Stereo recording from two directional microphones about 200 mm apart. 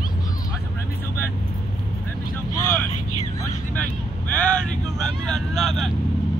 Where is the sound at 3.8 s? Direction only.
5° left (ahead or behind).